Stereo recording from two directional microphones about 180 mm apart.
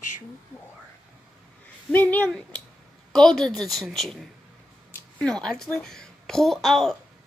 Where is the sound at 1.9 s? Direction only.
10° left (ahead or behind).